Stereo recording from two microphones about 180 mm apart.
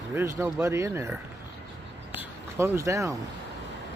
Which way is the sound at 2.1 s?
15° right (ahead or behind).